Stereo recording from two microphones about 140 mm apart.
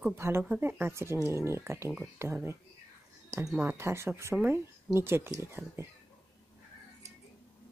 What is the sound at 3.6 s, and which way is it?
Speech, 15° right (ahead or behind).